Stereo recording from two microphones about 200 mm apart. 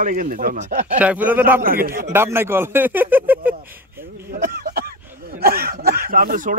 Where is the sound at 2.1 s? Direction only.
10° right (ahead or behind).